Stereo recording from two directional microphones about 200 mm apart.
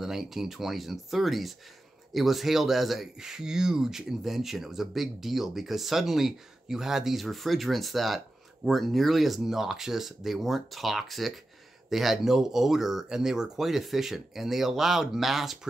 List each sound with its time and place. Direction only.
0.0 s speech: centre (ahead or behind)